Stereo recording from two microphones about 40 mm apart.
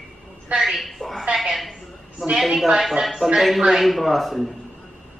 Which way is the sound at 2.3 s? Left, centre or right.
Centre.